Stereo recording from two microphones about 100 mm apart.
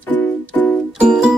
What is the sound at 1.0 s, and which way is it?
Music, 10° right (ahead or behind).